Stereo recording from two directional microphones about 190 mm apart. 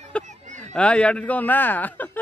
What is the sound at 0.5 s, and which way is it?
Speech, 5° left (ahead or behind).